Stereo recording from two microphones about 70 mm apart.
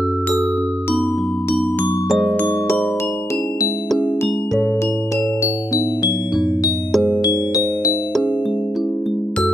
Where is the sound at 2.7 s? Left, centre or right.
Left.